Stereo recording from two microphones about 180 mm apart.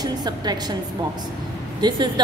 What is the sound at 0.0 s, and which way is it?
Speech, 25° right (ahead or behind).